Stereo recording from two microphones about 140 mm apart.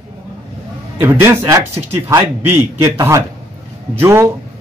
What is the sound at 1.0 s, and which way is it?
Speech, 15° right (ahead or behind).